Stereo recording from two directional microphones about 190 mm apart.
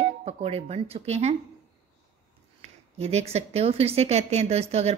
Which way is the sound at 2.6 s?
35° right (ahead or behind).